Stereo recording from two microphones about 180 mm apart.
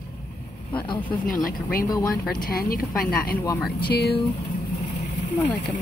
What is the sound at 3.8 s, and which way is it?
Speech, 60° left (ahead or behind).